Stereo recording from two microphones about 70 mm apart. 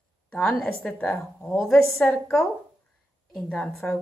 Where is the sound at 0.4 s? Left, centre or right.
Centre.